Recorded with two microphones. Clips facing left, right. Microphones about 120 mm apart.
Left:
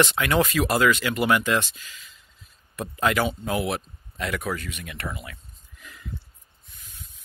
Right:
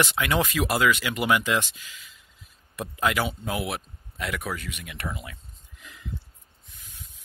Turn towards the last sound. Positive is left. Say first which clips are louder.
# even
turn(degrees=-15)  # may be behind; listen again after turning